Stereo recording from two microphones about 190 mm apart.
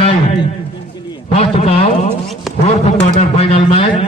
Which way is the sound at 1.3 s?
30° left (ahead or behind).